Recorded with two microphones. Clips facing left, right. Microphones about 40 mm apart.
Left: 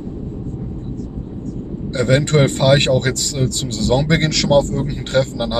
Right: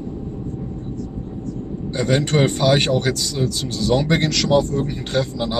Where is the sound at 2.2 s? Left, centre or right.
Left.